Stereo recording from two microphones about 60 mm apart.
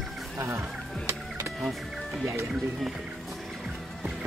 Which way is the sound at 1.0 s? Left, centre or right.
Right.